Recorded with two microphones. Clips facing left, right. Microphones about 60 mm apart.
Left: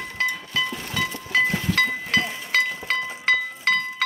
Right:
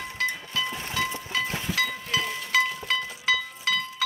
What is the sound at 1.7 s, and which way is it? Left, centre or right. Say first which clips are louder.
Music: left 5 dB; left.